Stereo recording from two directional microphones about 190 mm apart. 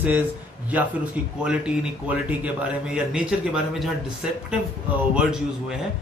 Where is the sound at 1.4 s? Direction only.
5° right (ahead or behind).